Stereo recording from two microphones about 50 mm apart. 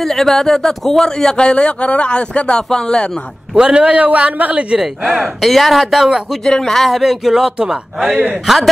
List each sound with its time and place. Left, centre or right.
0.0 s a man's voice: centre
3.5 s a man's voice: centre
5.2 s speech: centre
6.4 s speech: centre
7.5 s a man's voice: centre
8.5 s speech: centre